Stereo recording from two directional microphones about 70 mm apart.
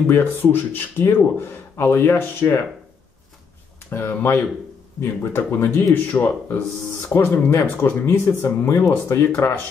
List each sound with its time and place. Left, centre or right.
0.0 s speech: left
3.9 s speech: left